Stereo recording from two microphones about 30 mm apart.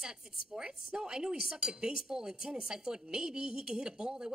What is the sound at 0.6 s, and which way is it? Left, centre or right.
A woman's voice, right.